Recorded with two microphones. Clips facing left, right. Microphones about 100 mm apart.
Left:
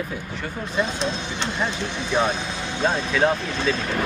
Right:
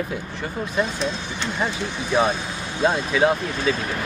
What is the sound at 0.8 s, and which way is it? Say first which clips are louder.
Speech: left 1 dB; 25° left (ahead or behind).